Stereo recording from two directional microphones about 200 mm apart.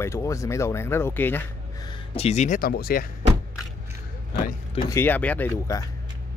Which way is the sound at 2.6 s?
50° left (ahead or behind).